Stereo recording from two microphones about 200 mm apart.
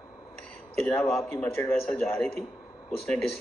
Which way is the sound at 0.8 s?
Centre (ahead or behind).